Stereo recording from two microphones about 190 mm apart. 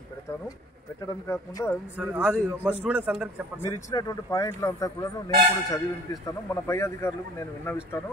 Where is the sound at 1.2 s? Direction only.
15° left (ahead or behind).